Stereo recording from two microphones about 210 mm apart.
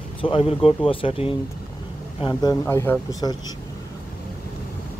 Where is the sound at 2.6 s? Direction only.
10° left (ahead or behind).